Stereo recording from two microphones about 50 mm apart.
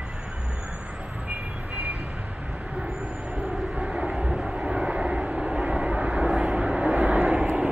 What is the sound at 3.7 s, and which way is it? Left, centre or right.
Vehicle, centre.